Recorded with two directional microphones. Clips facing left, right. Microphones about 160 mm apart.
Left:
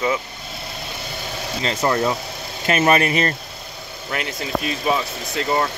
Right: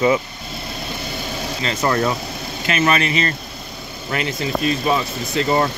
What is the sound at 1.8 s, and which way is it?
Speech, 15° left (ahead or behind).